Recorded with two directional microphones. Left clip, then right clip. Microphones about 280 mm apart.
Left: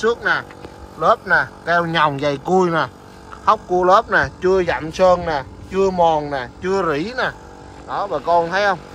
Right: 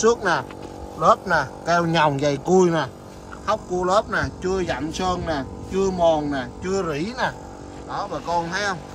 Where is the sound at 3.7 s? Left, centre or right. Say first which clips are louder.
Left 6 dB; centre.